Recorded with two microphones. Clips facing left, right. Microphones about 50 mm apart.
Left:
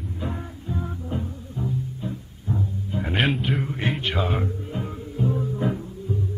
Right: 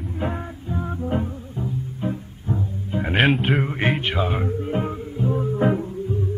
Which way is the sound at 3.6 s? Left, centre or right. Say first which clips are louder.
Right 4 dB; right.